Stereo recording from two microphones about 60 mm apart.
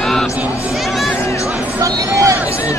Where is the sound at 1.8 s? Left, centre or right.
Right.